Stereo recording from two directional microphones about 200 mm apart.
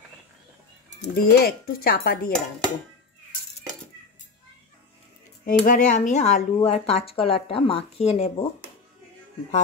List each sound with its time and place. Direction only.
1.0 s speech: 50° left (ahead or behind)
5.4 s speech: 45° left (ahead or behind)